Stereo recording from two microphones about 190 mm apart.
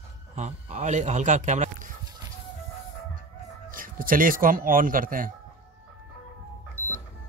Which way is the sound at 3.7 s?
45° right (ahead or behind).